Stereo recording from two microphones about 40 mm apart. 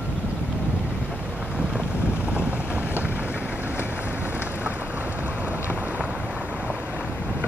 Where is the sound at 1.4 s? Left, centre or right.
Right.